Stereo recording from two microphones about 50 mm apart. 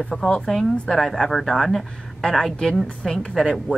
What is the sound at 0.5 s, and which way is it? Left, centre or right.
A woman's voice, centre.